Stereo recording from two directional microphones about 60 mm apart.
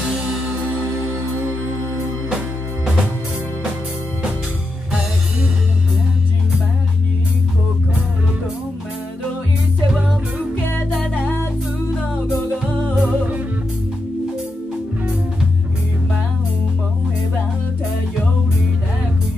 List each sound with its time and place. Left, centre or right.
0.5 s music: right
2.2 s music: centre
12.9 s music: right